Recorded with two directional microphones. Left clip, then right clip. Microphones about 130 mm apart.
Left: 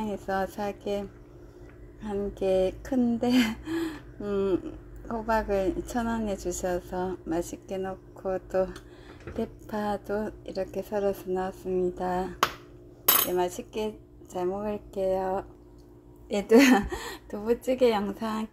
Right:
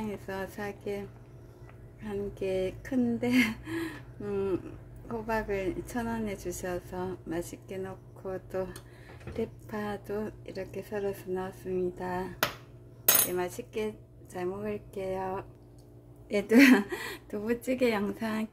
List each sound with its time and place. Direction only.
0.1 s a woman's voice: 20° left (ahead or behind)
2.0 s a woman's voice: 20° left (ahead or behind)
13.3 s a woman's voice: 20° left (ahead or behind); by 18.5 s 5° left (ahead or behind)